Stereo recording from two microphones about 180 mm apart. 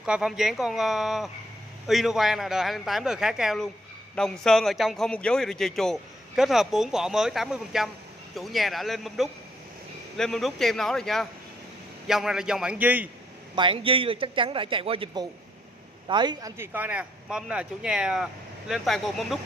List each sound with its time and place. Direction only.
0.0 s a man's voice: 5° right (ahead or behind)
13.6 s a man's voice: 30° right (ahead or behind); by 19.4 s centre (ahead or behind)